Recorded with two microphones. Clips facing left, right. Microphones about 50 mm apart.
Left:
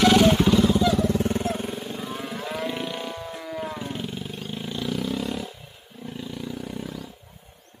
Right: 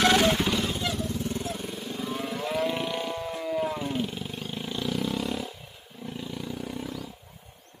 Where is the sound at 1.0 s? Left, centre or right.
Left.